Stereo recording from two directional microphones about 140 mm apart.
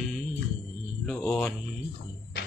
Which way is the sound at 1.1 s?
5° left (ahead or behind).